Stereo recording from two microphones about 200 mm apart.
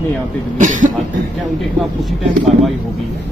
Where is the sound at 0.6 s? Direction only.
40° right (ahead or behind).